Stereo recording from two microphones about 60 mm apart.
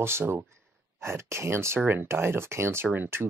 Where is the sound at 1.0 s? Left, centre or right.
Right.